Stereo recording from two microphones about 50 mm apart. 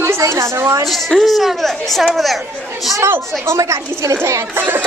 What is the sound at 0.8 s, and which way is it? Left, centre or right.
A woman's voice, centre.